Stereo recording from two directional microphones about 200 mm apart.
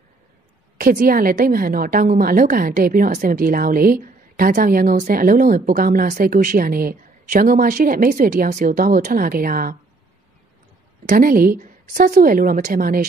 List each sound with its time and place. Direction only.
0.7 s a woman's voice: 45° right (ahead or behind)
11.1 s a woman's voice: 45° right (ahead or behind)